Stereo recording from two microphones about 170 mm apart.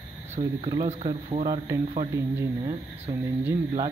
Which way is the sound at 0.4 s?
30° right (ahead or behind).